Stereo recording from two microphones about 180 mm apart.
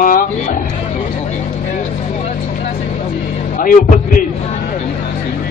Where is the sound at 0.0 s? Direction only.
50° left (ahead or behind).